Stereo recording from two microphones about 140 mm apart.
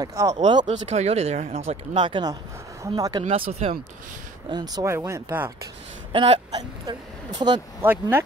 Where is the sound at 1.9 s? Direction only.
35° right (ahead or behind).